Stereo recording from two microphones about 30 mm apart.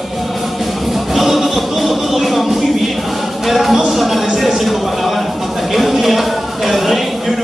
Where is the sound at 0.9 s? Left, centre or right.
Centre.